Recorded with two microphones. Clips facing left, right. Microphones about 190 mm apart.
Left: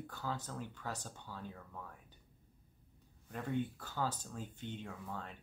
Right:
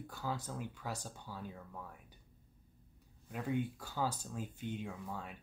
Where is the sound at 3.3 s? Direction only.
10° right (ahead or behind).